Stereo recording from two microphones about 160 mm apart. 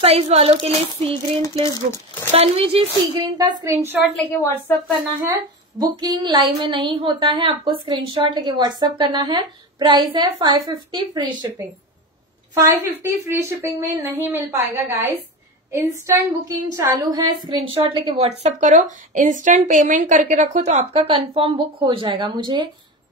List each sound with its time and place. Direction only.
0.0 s speech: 40° right (ahead or behind)
2.3 s speech: 40° right (ahead or behind)
3.2 s speech: 25° right (ahead or behind)
4.3 s speech: 20° left (ahead or behind)
5.3 s a woman's voice: 25° right (ahead or behind)
18.4 s a woman's voice: 50° right (ahead or behind); by 22.7 s 30° right (ahead or behind)